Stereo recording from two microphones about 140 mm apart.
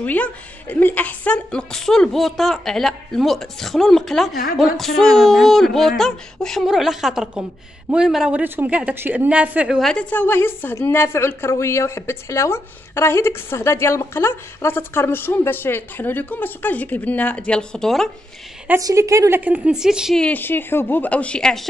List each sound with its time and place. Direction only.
0.0 s a woman's voice: 10° left (ahead or behind); by 9.8 s 10° right (ahead or behind)
9.8 s a woman's voice: 5° left (ahead or behind)
18.8 s a woman's voice: 25° right (ahead or behind)
19.4 s a woman's voice: 10° right (ahead or behind)
20.2 s a woman's voice: 10° left (ahead or behind)